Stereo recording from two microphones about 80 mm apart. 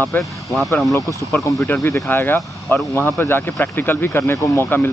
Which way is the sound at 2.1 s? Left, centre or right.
Left.